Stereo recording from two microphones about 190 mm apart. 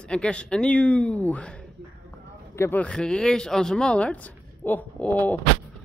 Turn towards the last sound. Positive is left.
turn(degrees=10)  # may be behind; listen again after turning